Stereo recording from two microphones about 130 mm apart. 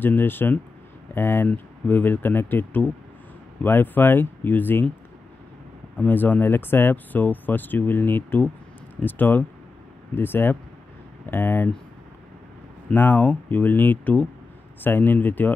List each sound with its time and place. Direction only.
0.0 s speech: 15° left (ahead or behind)
5.9 s speech: 15° left (ahead or behind)
12.9 s speech: 15° left (ahead or behind)